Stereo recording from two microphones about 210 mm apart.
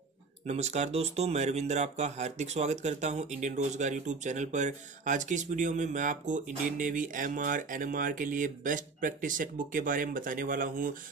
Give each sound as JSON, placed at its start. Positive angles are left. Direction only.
{"t": 0.5, "sound": "speech", "side_deg": -30}